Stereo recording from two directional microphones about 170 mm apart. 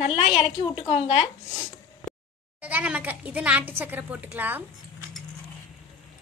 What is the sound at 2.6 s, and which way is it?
A woman's voice, 10° right (ahead or behind).